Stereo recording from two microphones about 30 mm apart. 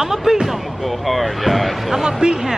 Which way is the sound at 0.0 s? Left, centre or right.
Centre.